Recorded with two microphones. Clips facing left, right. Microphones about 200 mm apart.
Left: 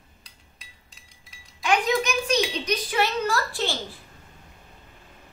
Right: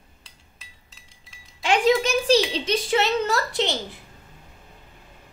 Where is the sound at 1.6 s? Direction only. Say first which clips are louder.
Right 4 dB; 30° right (ahead or behind).